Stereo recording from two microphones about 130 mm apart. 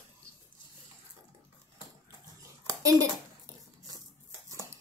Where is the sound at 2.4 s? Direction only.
25° right (ahead or behind).